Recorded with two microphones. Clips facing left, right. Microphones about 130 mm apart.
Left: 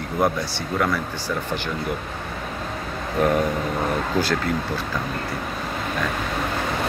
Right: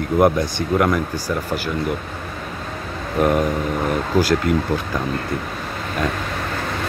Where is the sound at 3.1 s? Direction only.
5° right (ahead or behind).